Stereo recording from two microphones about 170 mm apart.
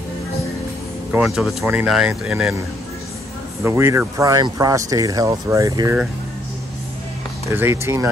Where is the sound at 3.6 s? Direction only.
15° right (ahead or behind).